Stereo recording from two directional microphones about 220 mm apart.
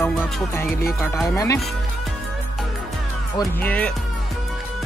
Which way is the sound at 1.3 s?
15° left (ahead or behind).